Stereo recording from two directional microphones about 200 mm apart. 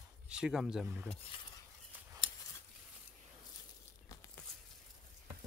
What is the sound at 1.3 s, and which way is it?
Cutlery, 25° left (ahead or behind).